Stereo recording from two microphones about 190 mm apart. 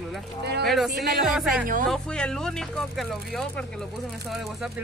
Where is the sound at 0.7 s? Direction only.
Centre (ahead or behind).